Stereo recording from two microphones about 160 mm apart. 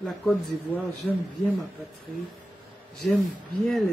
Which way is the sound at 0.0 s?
Centre (ahead or behind).